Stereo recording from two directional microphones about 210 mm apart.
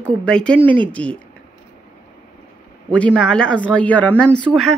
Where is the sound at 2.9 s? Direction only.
5° left (ahead or behind).